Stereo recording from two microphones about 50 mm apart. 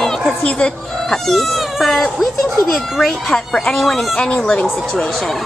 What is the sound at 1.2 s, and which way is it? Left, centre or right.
Speech, centre.